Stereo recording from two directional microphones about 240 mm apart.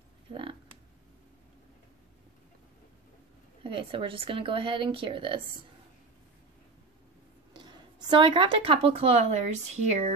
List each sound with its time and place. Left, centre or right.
0.3 s a sound: right
3.6 s speech: right
7.5 s speech: centre